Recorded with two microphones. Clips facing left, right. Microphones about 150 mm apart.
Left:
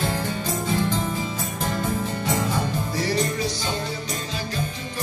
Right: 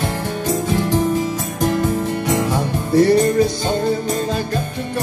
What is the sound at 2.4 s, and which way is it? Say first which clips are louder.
Music: right 5 dB; 60° right (ahead or behind).